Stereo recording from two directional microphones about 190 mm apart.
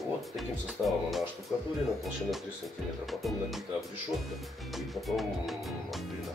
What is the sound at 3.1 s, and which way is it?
Speech, centre (ahead or behind).